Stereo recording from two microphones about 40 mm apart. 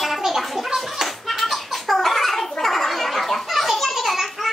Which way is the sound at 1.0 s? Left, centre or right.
Centre.